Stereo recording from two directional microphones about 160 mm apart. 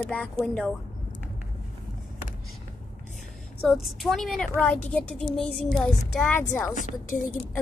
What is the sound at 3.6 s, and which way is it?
Speech, centre (ahead or behind).